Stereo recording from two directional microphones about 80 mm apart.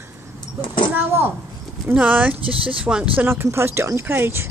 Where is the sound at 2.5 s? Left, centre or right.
Right.